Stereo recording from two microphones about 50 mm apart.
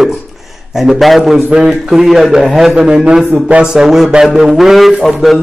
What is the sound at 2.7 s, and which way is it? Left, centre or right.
Speech, centre.